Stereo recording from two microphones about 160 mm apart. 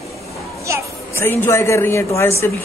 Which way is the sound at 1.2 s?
15° left (ahead or behind).